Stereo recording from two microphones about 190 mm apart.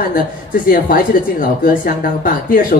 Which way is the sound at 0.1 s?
50° left (ahead or behind).